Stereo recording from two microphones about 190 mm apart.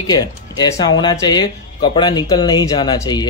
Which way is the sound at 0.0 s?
20° left (ahead or behind).